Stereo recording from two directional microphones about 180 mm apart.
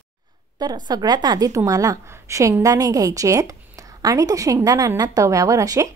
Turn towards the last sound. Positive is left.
turn(degrees=-20)  # may be behind; listen again after turning